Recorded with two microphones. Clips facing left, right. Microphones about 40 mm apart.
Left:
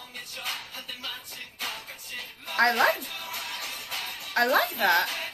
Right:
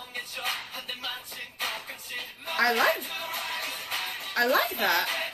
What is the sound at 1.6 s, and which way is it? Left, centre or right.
Music, right.